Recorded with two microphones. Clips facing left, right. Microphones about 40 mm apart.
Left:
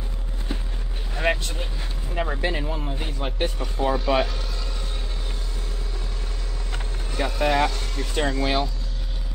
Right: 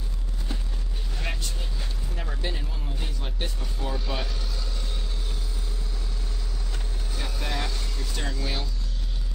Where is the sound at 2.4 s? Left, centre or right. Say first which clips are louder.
Left 8 dB; left.